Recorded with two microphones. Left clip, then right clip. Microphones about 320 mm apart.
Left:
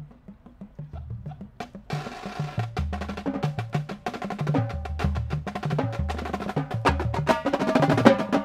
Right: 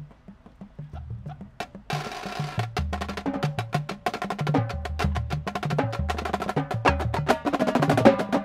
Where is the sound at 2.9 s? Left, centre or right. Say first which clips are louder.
Right 1 dB; centre.